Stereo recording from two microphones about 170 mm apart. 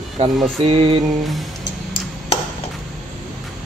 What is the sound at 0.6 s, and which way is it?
Speech, 35° right (ahead or behind).